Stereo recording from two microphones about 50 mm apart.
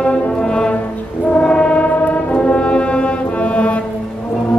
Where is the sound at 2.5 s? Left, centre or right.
Left.